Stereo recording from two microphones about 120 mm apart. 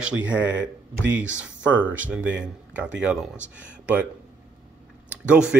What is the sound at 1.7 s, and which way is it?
Speech, 15° right (ahead or behind).